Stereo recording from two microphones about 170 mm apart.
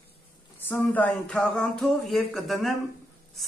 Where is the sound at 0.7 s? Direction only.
10° left (ahead or behind).